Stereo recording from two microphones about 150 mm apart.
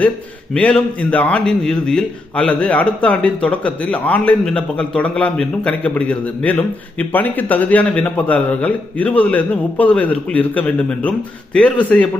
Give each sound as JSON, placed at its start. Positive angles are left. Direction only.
{"t": 0.6, "sound": "a man's voice", "side_deg": 10}